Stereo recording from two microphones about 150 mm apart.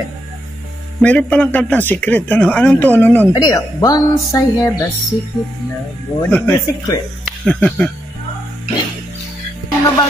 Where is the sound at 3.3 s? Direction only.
25° left (ahead or behind).